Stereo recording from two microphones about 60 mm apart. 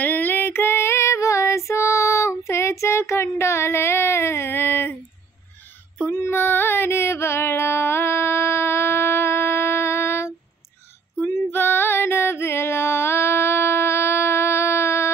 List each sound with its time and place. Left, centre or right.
0.0 s female singing: left
6.1 s music: left
11.5 s music: left